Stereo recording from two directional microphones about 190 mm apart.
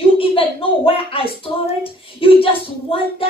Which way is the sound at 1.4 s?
30° left (ahead or behind).